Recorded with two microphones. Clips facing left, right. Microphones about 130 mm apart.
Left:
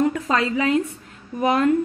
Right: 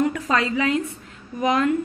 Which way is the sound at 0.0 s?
30° left (ahead or behind).